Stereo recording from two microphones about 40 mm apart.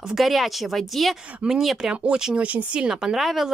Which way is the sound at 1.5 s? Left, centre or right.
Centre.